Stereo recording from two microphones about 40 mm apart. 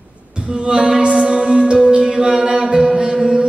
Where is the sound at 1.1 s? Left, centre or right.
Centre.